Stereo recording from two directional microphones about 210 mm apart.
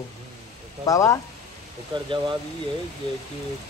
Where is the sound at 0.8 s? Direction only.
15° left (ahead or behind).